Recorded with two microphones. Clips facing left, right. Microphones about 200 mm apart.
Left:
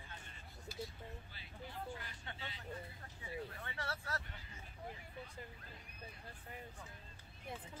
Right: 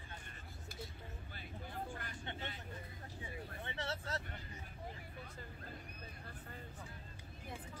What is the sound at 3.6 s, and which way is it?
Vehicle, 20° right (ahead or behind).